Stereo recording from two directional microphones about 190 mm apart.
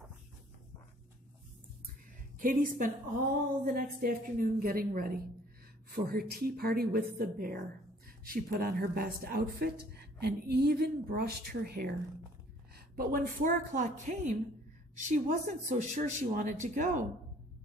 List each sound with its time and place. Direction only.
2.3 s a woman's voice: 45° right (ahead or behind)